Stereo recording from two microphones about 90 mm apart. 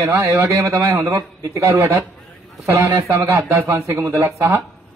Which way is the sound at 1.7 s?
25° right (ahead or behind).